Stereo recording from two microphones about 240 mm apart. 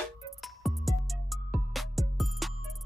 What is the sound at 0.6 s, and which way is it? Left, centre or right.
Music, centre.